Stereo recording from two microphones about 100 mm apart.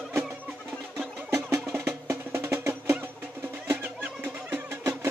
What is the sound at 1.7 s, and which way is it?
Music, 20° right (ahead or behind).